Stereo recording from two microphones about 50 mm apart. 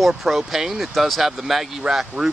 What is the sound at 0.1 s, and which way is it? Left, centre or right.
Speech, centre.